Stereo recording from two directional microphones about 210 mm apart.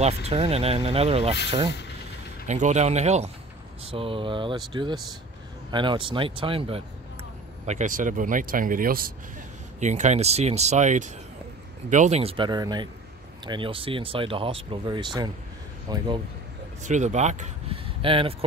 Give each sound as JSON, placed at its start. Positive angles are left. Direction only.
{"t": 0.0, "sound": "speech", "side_deg": -30}
{"t": 2.4, "sound": "speech", "side_deg": -35}
{"t": 5.7, "sound": "speech", "side_deg": -20}
{"t": 7.6, "sound": "speech", "side_deg": -35}
{"t": 16.8, "sound": "speech", "side_deg": -35}